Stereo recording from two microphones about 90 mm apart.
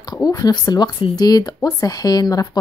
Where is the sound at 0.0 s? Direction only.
45° left (ahead or behind).